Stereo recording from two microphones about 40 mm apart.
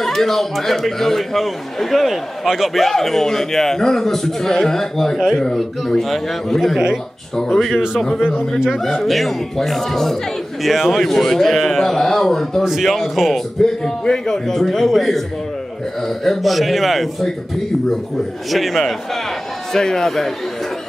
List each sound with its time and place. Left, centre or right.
0.0 s a man's voice: centre
5.1 s a man's voice: centre
8.7 s speech: centre
12.6 s speech: centre
14.0 s a man's voice: centre
18.5 s speech: centre
19.7 s a man's voice: centre